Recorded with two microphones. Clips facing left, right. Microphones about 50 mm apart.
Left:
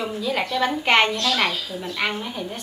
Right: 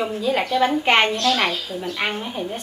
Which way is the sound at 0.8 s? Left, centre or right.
Centre.